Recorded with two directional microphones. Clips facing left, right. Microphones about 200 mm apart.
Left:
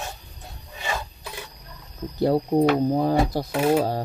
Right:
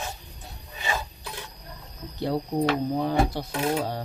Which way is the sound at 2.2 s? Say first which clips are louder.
Left 6 dB; 40° left (ahead or behind).